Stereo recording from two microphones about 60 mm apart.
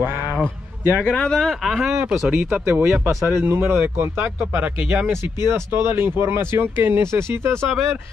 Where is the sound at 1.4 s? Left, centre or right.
Centre.